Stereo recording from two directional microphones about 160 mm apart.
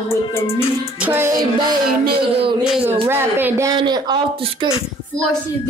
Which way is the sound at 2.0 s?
80° right.